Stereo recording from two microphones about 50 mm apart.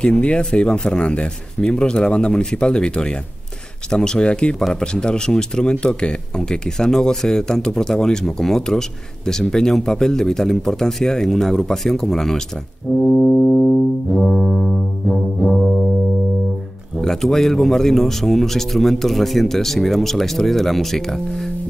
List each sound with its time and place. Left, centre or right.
0.2 s speech: centre
13.0 s music: centre
17.0 s speech: centre